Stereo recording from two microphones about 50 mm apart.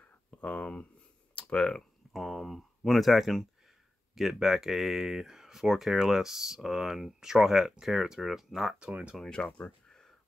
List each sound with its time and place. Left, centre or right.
0.0 s a sound: left
1.3 s speech: centre
2.1 s speech: centre
9.2 s speech: centre